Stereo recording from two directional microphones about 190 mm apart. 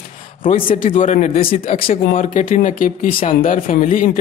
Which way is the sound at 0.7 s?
45° left (ahead or behind).